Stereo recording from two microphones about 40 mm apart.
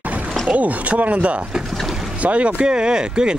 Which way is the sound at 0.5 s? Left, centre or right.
Right.